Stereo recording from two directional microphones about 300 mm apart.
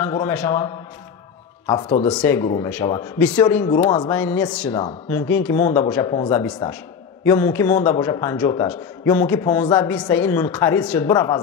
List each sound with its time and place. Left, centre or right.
0.0 s a man's voice: centre